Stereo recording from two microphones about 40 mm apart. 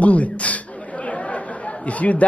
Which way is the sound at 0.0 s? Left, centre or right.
Left.